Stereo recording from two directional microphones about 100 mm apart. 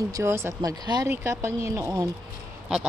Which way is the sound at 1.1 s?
30° right (ahead or behind).